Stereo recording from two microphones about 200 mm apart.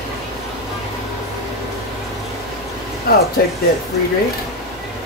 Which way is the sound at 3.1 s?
50° left (ahead or behind).